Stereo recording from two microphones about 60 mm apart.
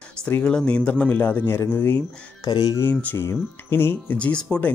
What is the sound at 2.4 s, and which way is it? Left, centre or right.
Speech, left.